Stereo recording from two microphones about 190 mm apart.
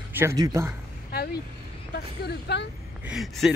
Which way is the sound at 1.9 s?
60° left (ahead or behind).